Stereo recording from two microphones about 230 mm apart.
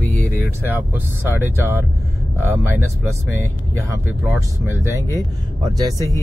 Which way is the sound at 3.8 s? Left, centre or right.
Centre.